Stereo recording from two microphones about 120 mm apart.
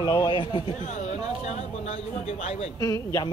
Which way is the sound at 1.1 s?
70° left (ahead or behind).